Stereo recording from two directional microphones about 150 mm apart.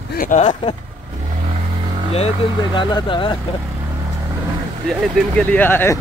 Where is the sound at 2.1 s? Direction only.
40° left (ahead or behind).